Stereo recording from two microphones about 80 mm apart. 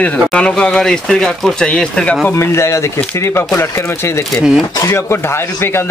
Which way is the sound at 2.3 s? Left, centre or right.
Left.